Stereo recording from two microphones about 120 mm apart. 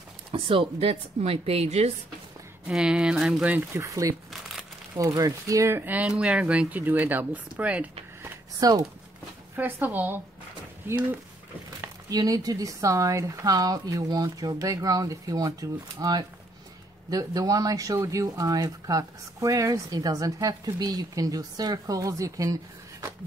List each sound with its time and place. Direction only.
0.3 s a woman's voice: 50° right (ahead or behind)
2.6 s speech: 5° right (ahead or behind)
3.7 s speech: 25° right (ahead or behind)
8.5 s speech: 30° right (ahead or behind)
9.6 s speech: 15° right (ahead or behind)
12.1 s speech: 30° right (ahead or behind)